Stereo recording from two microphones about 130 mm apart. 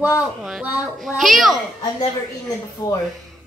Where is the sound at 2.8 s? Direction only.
30° left (ahead or behind).